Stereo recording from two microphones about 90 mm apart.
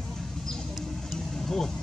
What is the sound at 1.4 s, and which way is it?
Vehicle, 5° left (ahead or behind).